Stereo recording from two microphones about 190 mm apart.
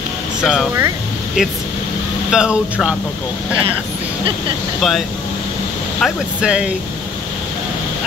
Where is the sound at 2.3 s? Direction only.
5° right (ahead or behind).